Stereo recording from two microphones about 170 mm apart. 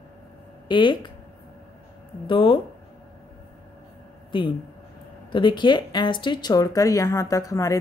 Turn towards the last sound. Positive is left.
turn(degrees=20)  # may be behind; listen again after turning